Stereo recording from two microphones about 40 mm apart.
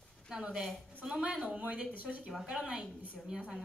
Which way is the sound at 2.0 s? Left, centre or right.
Right.